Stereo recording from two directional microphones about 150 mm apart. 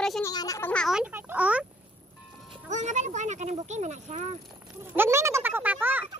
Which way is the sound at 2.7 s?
55° right (ahead or behind).